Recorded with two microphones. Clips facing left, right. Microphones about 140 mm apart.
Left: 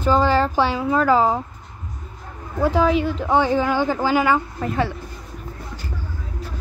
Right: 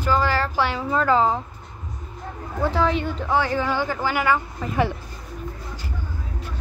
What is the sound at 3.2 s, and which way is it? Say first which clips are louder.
Speech: left 3 dB; 15° left (ahead or behind).